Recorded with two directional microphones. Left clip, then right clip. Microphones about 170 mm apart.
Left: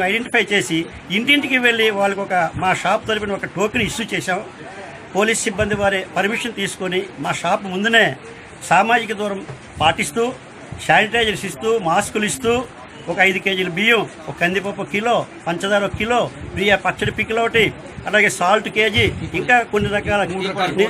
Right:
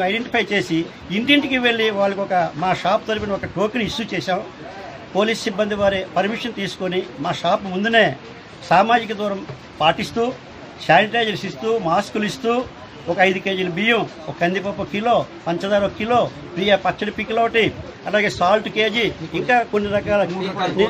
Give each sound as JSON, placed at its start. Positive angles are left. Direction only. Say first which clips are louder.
{"t": 0.0, "sound": "a man's voice", "louder": "left 2 dB", "side_deg": -5}